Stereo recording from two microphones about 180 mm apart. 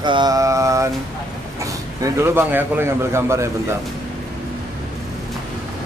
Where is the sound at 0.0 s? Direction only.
25° right (ahead or behind).